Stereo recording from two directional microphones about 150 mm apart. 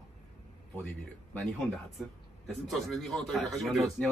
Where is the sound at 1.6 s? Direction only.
Centre (ahead or behind).